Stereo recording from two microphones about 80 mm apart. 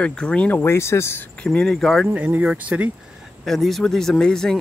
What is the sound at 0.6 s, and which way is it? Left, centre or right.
Speech, left.